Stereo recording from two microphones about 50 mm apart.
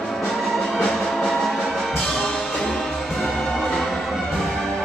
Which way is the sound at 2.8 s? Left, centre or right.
Centre.